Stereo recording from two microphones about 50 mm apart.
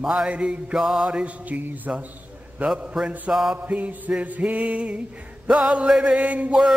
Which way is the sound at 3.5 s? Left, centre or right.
Right.